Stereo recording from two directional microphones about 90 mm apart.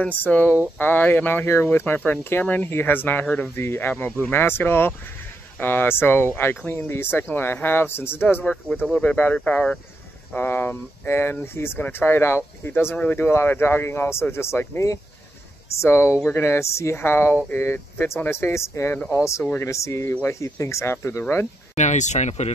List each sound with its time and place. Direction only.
0.0 s speech: 20° left (ahead or behind)